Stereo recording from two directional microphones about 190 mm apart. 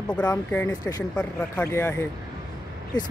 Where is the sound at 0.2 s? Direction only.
10° left (ahead or behind).